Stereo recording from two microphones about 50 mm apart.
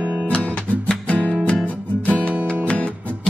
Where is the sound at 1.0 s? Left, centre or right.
Left.